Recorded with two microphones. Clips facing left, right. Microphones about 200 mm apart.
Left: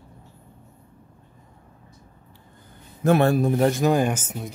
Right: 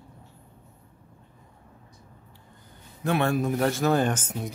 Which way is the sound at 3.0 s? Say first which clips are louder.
Left 6 dB; 40° left (ahead or behind).